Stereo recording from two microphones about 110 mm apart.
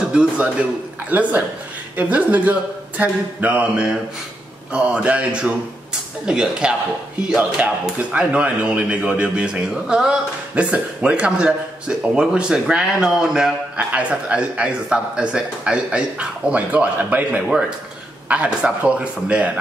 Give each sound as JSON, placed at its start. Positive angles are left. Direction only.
{"t": 0.1, "sound": "a man's voice", "side_deg": -10}